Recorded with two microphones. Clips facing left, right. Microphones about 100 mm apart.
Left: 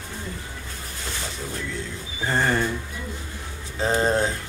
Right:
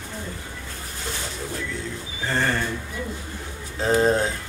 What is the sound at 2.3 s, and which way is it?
Speech, 15° left (ahead or behind).